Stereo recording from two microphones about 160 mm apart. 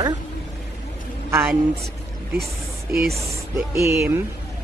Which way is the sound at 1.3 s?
10° right (ahead or behind).